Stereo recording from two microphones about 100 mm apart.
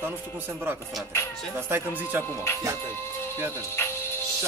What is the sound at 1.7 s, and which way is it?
Speech, 25° right (ahead or behind).